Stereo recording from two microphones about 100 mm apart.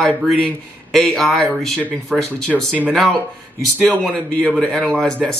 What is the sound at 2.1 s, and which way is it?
Speech, 15° right (ahead or behind).